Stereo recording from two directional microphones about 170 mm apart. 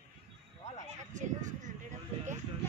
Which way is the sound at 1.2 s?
45° right (ahead or behind).